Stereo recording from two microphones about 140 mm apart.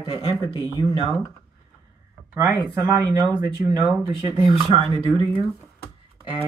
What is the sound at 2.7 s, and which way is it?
Speech, 25° right (ahead or behind).